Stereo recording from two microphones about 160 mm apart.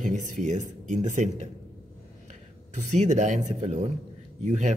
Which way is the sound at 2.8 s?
45° right (ahead or behind).